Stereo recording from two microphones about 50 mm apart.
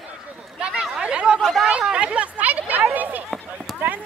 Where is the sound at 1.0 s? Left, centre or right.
Centre.